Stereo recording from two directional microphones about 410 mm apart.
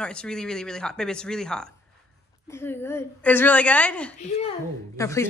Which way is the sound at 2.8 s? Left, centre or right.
Centre.